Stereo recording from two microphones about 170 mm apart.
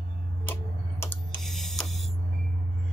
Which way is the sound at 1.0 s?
10° left (ahead or behind).